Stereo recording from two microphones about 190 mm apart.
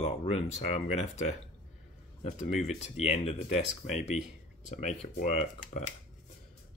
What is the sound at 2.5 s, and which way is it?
Speech, 35° left (ahead or behind).